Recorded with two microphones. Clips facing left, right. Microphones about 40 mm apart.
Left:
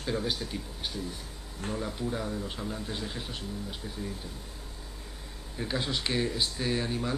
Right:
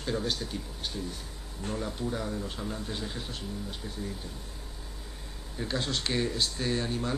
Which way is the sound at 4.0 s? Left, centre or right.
Centre.